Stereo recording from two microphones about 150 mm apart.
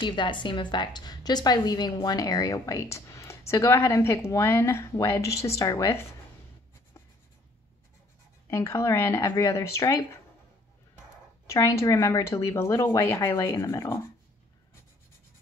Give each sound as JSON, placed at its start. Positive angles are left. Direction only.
{"t": 0.0, "sound": "a woman's voice", "side_deg": 30}
{"t": 8.5, "sound": "a woman's voice", "side_deg": 20}
{"t": 11.5, "sound": "a woman's voice", "side_deg": 20}